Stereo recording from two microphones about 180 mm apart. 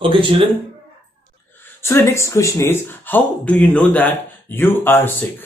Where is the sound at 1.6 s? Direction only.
15° left (ahead or behind).